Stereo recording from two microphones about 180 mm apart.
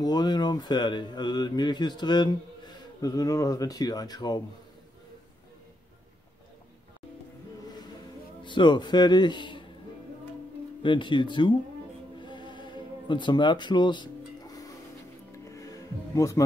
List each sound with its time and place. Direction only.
0.0 s speech: 25° left (ahead or behind)
8.5 s speech: 25° left (ahead or behind)
10.8 s speech: 25° left (ahead or behind)
12.2 s music: 25° left (ahead or behind)